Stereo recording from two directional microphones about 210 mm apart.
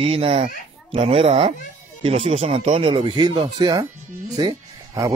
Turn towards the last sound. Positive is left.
turn(degrees=-20)  # may be behind; listen again after turning